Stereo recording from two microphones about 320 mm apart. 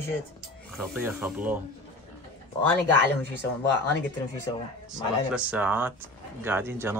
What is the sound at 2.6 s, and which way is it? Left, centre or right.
Speech, centre.